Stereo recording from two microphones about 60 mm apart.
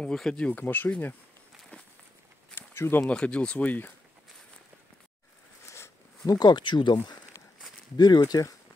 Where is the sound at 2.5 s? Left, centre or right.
Left.